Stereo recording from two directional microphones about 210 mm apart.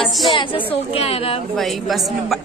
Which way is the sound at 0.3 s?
25° left (ahead or behind).